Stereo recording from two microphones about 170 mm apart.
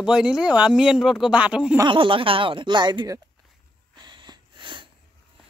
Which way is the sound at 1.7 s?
30° right (ahead or behind).